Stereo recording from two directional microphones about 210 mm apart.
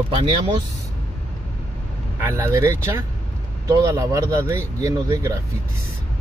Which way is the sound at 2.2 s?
15° right (ahead or behind).